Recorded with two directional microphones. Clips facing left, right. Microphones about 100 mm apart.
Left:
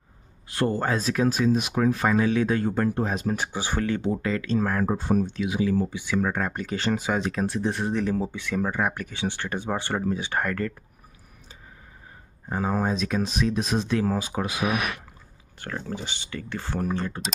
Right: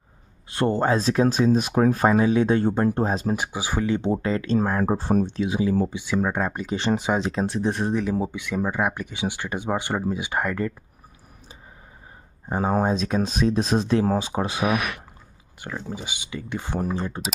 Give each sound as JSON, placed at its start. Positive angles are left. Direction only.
{"t": 0.5, "sound": "speech", "side_deg": -25}
{"t": 2.0, "sound": "speech", "side_deg": -25}
{"t": 3.3, "sound": "speech", "side_deg": -10}
{"t": 3.8, "sound": "speech", "side_deg": -20}
{"t": 7.9, "sound": "speech", "side_deg": -10}
{"t": 12.5, "sound": "speech", "side_deg": -35}
{"t": 15.6, "sound": "speech", "side_deg": -10}